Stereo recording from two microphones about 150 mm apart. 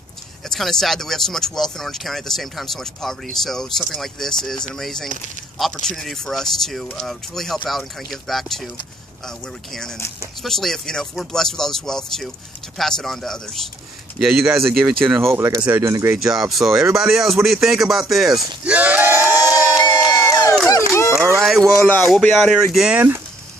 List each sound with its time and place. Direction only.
0.5 s speech: 5° left (ahead or behind)
9.7 s speech: 5° left (ahead or behind)
15.2 s speech: 15° right (ahead or behind)
16.2 s speech: centre (ahead or behind)
18.7 s a sound: 10° right (ahead or behind)
19.9 s a sound: 20° left (ahead or behind)
21.4 s speech: centre (ahead or behind)
21.8 s speech: 10° left (ahead or behind)
22.1 s speech: centre (ahead or behind)